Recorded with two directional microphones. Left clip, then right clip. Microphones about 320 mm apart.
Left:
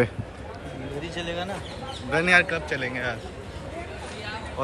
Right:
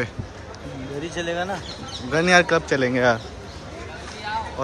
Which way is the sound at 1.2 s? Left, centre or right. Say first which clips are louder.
Right 6 dB; right.